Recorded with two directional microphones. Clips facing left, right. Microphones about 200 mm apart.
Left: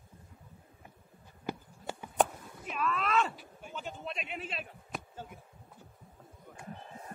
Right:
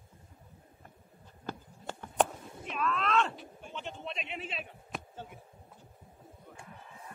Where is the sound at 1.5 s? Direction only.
10° left (ahead or behind).